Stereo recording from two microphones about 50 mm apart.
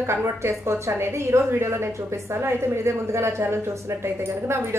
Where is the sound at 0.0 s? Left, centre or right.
Right.